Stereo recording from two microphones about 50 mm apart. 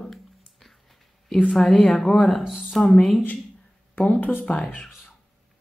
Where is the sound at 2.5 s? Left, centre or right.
Centre.